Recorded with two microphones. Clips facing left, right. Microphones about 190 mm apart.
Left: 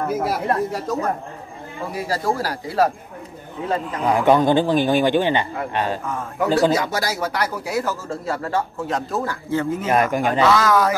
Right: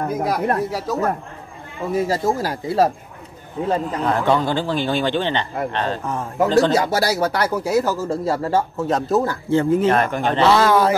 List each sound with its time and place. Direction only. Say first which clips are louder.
0.1 s speech: right 2 dB; 5° left (ahead or behind)
1.9 s speech: right 4 dB; 20° right (ahead or behind)
3.6 s speech: right 4 dB; 40° right (ahead or behind)
4.0 s a man's voice: left 5 dB; 15° left (ahead or behind)
6.7 s speech: right 3 dB; 35° right (ahead or behind)
9.8 s a man's voice: right 1 dB; 10° left (ahead or behind)
10.4 s speech: right 3 dB; 30° right (ahead or behind)